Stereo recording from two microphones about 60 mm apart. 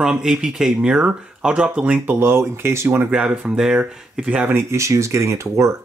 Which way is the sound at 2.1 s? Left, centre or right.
Right.